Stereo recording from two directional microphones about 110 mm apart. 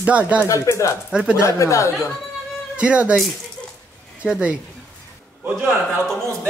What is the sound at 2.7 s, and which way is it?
Speech, 10° right (ahead or behind).